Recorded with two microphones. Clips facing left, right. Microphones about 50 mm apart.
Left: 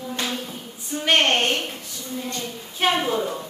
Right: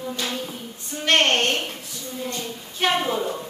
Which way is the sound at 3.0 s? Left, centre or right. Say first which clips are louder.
Left 1 dB; centre.